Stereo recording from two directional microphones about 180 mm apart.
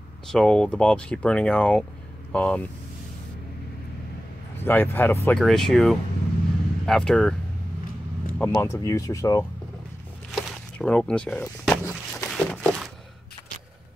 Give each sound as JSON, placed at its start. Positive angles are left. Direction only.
{"t": 0.3, "sound": "speech", "side_deg": 5}
{"t": 4.6, "sound": "speech", "side_deg": 10}
{"t": 5.4, "sound": "speech", "side_deg": 0}
{"t": 8.4, "sound": "speech", "side_deg": 15}
{"t": 10.3, "sound": "a sound", "side_deg": 0}